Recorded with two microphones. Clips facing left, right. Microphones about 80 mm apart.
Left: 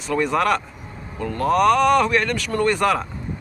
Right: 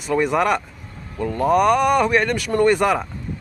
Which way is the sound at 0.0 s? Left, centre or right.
Centre.